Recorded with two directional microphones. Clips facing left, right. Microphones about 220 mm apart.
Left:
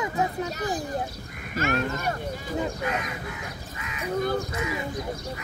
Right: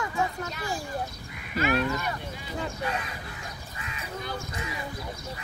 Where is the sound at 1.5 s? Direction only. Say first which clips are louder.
Right 1 dB; 45° left (ahead or behind).